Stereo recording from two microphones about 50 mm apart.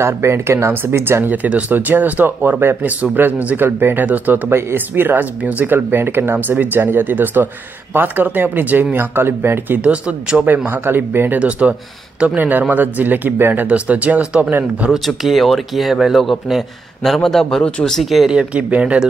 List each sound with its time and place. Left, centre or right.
0.0 s speech: right
1.2 s speech: right
4.5 s speech: right
4.7 s speech: right
9.8 s speech: right
10.4 s speech: right
11.3 s speech: right
13.7 s speech: right
14.9 s speech: centre
18.3 s speech: right